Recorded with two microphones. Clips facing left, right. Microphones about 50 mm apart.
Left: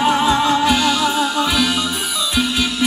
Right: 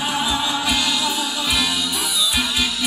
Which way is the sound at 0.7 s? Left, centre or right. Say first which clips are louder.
Left 5 dB; left.